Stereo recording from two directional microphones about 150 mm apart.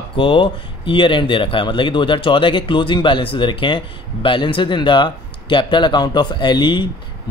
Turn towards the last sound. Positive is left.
turn(degrees=30)  # may be behind; listen again after turning